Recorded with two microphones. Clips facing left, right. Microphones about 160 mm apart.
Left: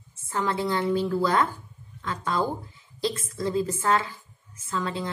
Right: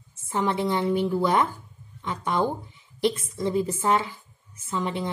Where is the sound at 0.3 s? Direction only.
20° right (ahead or behind).